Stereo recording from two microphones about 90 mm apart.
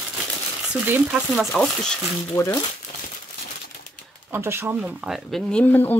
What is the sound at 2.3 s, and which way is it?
Speech, 30° left (ahead or behind).